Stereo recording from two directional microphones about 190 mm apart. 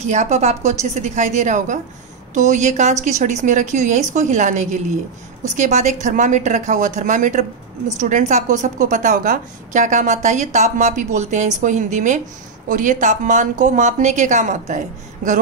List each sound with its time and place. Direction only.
0.0 s a woman's voice: 40° right (ahead or behind)